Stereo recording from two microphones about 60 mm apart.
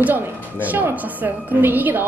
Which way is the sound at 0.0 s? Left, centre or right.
Right.